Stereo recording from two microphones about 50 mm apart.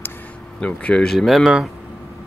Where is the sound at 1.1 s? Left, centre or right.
Centre.